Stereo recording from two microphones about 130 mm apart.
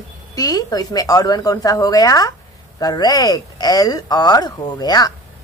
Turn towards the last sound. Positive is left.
turn(degrees=30)  # may be behind; listen again after turning